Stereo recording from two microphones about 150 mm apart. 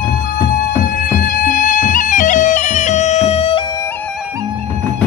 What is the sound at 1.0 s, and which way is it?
Music, 70° left (ahead or behind).